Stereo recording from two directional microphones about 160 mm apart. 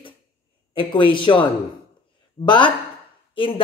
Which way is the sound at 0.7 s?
30° left (ahead or behind).